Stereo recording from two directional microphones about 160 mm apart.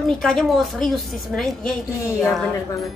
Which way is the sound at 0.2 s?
Centre (ahead or behind).